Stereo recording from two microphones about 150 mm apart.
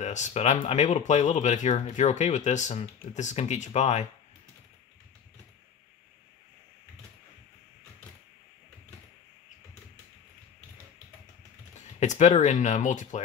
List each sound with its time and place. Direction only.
0.0 s speech: 50° left (ahead or behind)
12.0 s speech: 50° left (ahead or behind)